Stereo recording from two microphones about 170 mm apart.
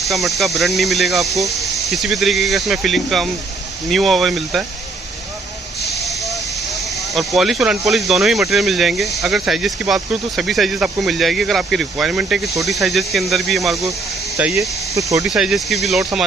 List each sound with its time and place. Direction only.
0.0 s speech: centre (ahead or behind)
5.9 s hiss: centre (ahead or behind)
7.0 s speech: centre (ahead or behind)
13.8 s speech: 15° right (ahead or behind)
15.2 s speech: 5° right (ahead or behind)